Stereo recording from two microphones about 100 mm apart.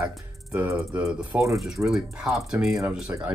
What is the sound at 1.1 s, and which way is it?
Speech, 10° right (ahead or behind).